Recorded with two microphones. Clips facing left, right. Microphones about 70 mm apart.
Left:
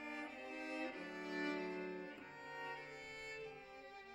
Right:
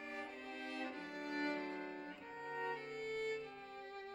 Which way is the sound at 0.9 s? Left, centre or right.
Centre.